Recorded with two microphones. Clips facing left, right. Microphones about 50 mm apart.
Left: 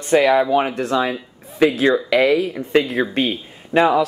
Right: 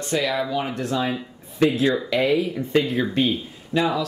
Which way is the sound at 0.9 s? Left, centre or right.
Left.